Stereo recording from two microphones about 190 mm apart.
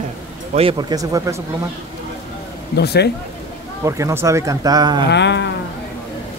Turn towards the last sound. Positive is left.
turn(degrees=65)  # may be behind; listen again after turning